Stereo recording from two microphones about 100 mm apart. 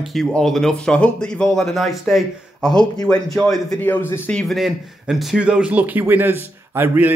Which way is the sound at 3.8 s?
20° left (ahead or behind).